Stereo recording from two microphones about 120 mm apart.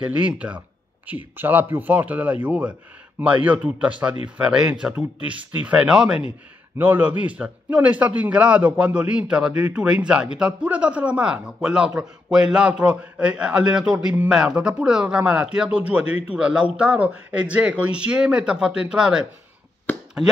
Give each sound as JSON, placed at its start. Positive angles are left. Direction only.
{"t": 0.0, "sound": "a man's voice", "side_deg": -10}